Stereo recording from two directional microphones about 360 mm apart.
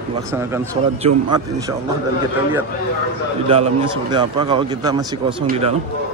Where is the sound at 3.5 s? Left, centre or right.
Centre.